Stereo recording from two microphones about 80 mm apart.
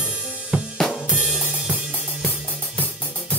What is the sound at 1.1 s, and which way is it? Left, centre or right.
Drum kit, centre.